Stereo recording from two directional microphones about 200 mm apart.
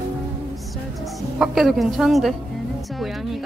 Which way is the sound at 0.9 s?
Centre (ahead or behind).